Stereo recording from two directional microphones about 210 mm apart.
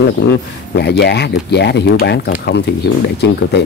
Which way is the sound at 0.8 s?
50° left (ahead or behind).